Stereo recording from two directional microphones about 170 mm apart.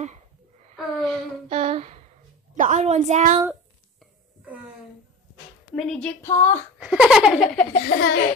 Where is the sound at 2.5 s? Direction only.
45° right (ahead or behind).